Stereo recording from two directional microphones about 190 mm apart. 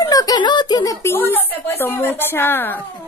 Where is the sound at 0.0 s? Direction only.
20° left (ahead or behind).